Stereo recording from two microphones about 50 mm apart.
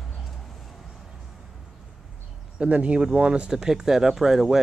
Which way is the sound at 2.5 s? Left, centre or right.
Right.